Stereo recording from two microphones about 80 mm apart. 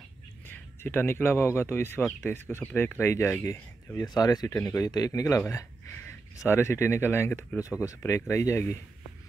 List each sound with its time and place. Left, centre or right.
0.5 s speech: left
4.0 s speech: left